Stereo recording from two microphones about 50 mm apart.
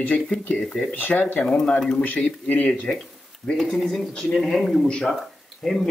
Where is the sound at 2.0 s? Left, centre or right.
Left.